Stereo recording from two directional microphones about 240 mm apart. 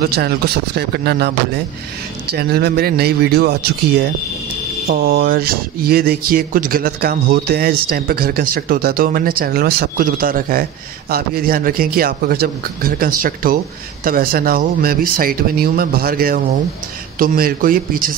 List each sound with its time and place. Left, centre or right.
0.0 s speech: right